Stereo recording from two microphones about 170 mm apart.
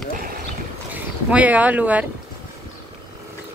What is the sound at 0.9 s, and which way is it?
Speech, 10° right (ahead or behind).